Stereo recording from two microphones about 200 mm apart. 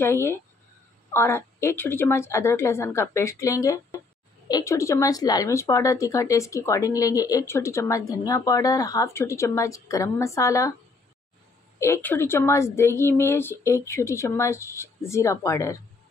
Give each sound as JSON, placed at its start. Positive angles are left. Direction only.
{"t": 0.0, "sound": "speech", "side_deg": 10}
{"t": 11.8, "sound": "speech", "side_deg": 10}